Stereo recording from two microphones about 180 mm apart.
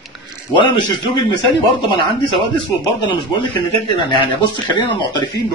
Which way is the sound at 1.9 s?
25° left (ahead or behind).